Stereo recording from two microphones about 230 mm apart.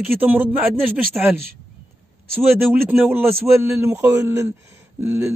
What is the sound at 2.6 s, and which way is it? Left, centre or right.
A man's voice, centre.